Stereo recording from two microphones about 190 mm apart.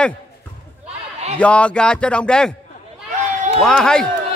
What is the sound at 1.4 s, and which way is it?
A man's voice, 5° left (ahead or behind).